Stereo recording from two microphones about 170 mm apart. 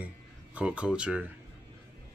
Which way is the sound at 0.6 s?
5° right (ahead or behind).